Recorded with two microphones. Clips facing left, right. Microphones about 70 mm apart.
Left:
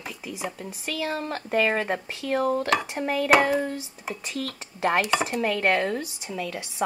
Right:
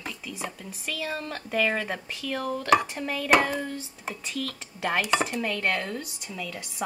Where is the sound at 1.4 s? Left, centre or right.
Left.